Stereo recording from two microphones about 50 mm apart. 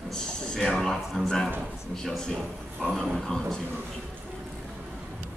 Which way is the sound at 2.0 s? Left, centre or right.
Centre.